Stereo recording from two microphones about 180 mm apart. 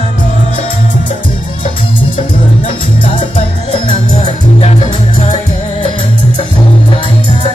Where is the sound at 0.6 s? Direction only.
50° left (ahead or behind).